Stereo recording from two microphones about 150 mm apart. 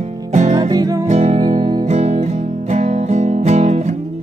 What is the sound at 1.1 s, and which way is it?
Music, 50° right (ahead or behind).